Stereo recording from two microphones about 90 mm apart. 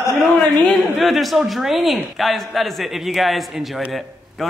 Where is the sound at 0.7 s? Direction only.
Centre (ahead or behind).